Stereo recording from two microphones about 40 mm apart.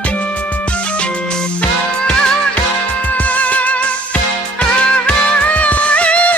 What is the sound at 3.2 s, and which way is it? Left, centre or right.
Music, left.